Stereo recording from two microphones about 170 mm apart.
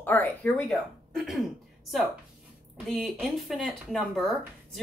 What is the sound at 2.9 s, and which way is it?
Speech, centre (ahead or behind).